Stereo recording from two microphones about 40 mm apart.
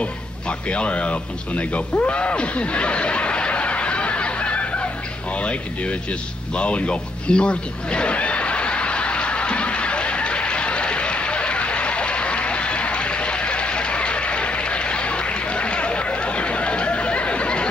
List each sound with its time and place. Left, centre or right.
0.0 s speech: left
2.0 s snicker: left
5.4 s speech: left
6.5 s a sound: left